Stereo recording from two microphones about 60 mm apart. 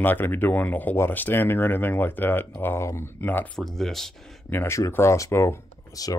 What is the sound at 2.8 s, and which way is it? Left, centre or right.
Speech, left.